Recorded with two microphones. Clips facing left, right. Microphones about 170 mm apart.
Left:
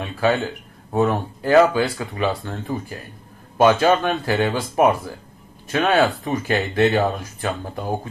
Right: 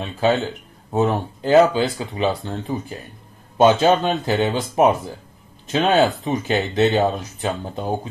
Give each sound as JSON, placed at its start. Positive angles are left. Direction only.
{"t": 0.0, "sound": "speech", "side_deg": -20}